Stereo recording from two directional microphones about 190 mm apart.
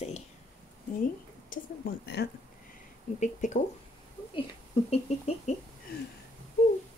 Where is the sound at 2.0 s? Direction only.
60° left (ahead or behind).